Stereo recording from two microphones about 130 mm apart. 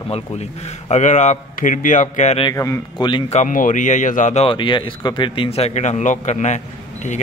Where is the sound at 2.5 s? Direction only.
25° left (ahead or behind).